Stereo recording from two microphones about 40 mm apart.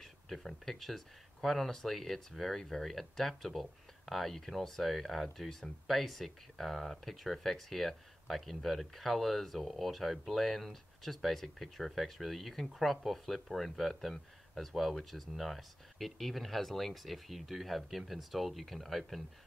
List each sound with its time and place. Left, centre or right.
0.0 s speech: centre